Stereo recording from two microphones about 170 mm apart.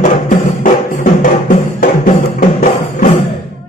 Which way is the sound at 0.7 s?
50° left (ahead or behind).